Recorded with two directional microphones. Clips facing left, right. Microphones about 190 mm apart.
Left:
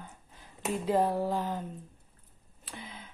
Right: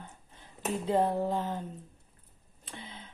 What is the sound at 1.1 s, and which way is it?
Speech, 20° right (ahead or behind).